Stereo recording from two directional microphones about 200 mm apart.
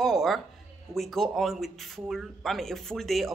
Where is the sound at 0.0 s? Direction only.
Centre (ahead or behind).